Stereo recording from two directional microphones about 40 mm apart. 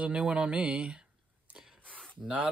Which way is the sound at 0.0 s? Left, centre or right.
Right.